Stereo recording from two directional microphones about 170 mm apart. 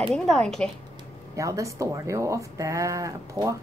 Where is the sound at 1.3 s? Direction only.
20° right (ahead or behind).